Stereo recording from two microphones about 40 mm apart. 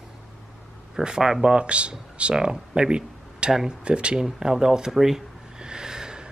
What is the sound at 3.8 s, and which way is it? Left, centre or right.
Speech, right.